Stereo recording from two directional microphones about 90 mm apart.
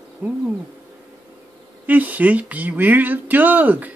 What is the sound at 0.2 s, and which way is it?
Speech, 15° right (ahead or behind).